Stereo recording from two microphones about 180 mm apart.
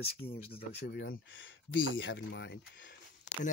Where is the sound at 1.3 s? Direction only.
90° left; by 2.5 s 75° left (ahead or behind).